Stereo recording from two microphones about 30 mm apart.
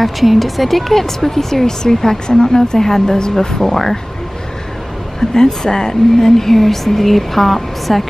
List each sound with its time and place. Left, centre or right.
0.0 s speech: centre
5.3 s speech: left; by 8.1 s centre